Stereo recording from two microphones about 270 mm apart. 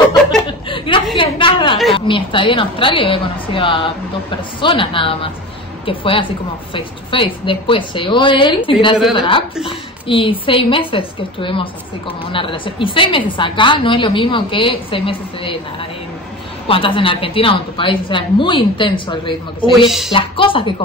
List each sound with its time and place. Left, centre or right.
0.5 s a sound: centre
2.0 s a woman's voice: centre
16.6 s a woman's voice: centre